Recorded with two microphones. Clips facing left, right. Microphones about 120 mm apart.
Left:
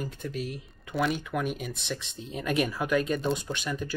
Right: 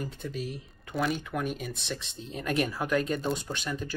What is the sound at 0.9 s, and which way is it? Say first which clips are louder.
Speech: left 2 dB; centre (ahead or behind).